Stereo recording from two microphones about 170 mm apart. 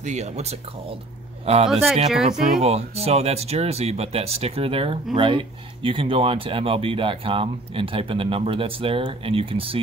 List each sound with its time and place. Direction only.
0.0 s a man's voice: 40° right (ahead or behind)
2.0 s speech: centre (ahead or behind)
2.6 s speech: 35° right (ahead or behind)